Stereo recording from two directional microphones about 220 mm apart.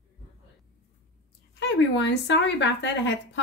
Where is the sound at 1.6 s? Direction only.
55° left (ahead or behind).